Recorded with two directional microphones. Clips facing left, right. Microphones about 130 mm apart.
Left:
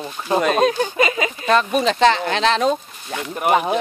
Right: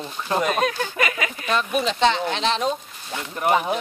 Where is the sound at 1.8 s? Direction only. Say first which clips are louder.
Left 4 dB; 90° left.